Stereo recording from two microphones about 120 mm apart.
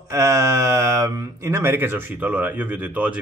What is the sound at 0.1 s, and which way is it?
Speech, 25° right (ahead or behind).